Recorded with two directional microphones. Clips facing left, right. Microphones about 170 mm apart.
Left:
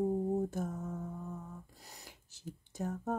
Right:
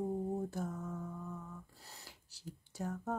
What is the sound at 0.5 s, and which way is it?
Mantra, 20° left (ahead or behind).